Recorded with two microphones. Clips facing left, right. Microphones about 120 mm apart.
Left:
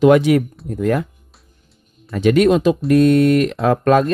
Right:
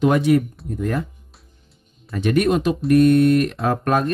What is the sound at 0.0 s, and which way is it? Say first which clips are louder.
Speech: left 5 dB; 90° left.